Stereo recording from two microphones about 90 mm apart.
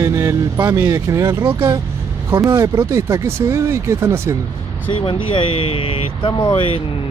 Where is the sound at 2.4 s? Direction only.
35° right (ahead or behind).